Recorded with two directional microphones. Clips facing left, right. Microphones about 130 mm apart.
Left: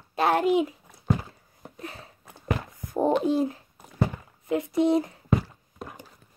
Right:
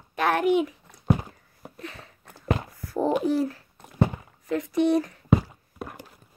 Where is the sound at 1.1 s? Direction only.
20° right (ahead or behind).